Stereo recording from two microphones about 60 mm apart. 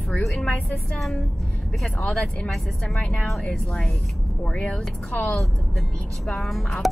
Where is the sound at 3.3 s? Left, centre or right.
Centre.